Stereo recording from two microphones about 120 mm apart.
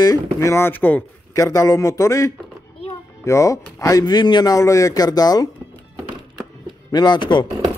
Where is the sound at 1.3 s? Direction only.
25° left (ahead or behind).